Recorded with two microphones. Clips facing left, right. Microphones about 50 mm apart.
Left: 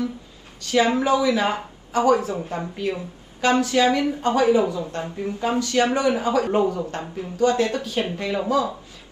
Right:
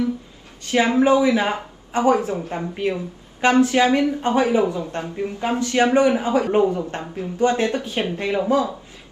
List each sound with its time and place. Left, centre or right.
0.6 s speech: right